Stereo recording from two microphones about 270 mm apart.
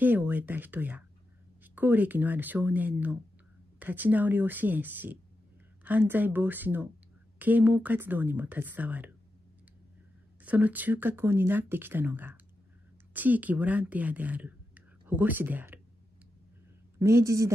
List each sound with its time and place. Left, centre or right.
0.0 s speech: centre
10.4 s speech: centre
17.0 s speech: centre